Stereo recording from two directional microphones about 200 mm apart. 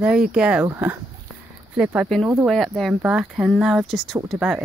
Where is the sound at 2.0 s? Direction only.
Centre (ahead or behind).